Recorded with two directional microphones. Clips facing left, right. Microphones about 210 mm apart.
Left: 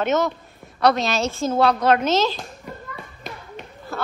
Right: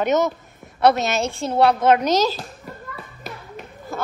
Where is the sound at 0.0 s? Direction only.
15° right (ahead or behind).